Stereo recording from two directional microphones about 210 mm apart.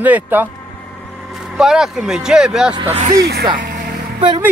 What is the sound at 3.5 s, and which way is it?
Music, 40° right (ahead or behind).